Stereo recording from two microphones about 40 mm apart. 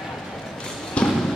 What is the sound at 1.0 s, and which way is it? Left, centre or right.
Basketball bounce, left.